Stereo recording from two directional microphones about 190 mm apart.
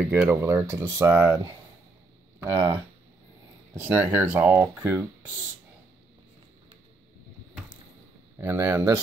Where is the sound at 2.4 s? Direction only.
20° right (ahead or behind).